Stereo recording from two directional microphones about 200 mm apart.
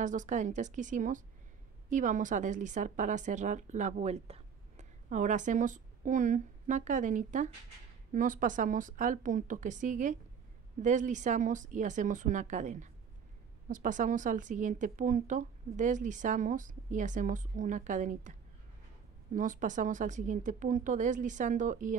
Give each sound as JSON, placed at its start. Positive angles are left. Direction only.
{"t": 0.0, "sound": "a woman's voice", "side_deg": -40}
{"t": 19.3, "sound": "a woman's voice", "side_deg": -40}